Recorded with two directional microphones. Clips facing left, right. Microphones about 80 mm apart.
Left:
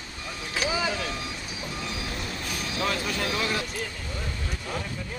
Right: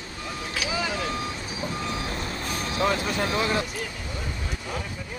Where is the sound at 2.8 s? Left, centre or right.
Right.